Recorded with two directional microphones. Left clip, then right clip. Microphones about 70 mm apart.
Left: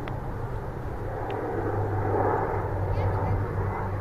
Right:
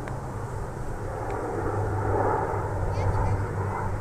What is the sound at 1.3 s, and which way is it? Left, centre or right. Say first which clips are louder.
Vehicle: even; centre.